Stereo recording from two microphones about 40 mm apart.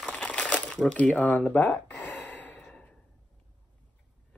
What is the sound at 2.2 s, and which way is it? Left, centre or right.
Gasp, left.